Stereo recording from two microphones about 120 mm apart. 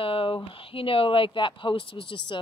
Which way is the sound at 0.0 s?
50° left (ahead or behind).